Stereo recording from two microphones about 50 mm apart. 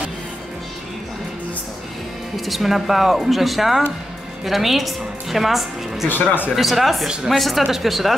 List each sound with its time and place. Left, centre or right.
2.3 s a woman's voice: centre
6.0 s a man's voice: left
6.5 s a woman's voice: centre